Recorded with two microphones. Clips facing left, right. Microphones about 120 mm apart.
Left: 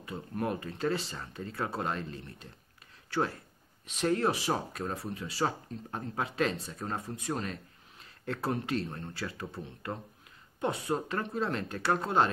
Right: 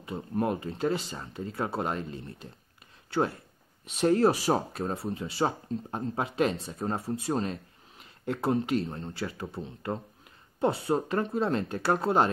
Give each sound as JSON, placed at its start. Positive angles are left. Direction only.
{"t": 0.0, "sound": "speech", "side_deg": -25}